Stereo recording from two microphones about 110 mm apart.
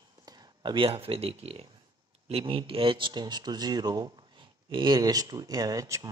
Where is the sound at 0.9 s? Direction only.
60° right (ahead or behind); by 6.1 s 30° right (ahead or behind).